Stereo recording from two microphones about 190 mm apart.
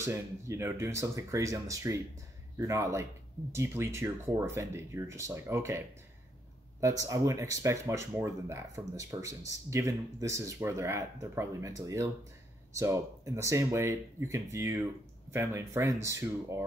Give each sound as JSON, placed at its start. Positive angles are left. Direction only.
{"t": 0.0, "sound": "speech", "side_deg": -15}